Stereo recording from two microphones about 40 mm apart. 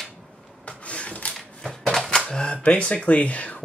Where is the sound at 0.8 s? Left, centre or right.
Left.